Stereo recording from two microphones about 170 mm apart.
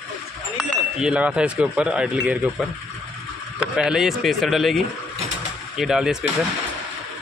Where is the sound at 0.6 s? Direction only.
5° right (ahead or behind).